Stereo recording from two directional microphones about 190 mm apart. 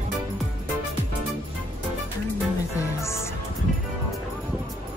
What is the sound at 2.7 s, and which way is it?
Music, 15° left (ahead or behind).